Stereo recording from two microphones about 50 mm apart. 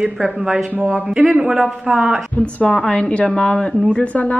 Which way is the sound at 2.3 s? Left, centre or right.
Left.